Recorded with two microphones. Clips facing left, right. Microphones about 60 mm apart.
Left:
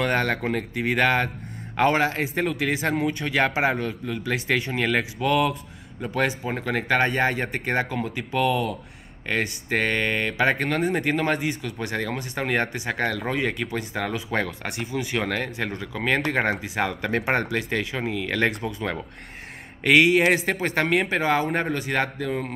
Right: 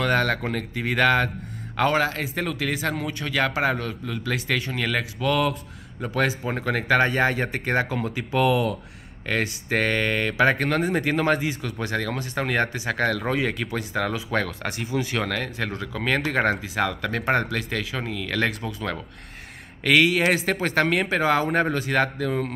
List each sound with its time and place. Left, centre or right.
0.0 s speech: centre
6.1 s speech: centre
19.8 s speech: centre